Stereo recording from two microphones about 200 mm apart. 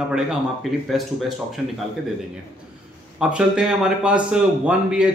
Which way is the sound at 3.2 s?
5° right (ahead or behind).